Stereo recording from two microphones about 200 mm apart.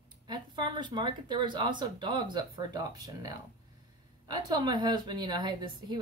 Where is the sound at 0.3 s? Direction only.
20° right (ahead or behind).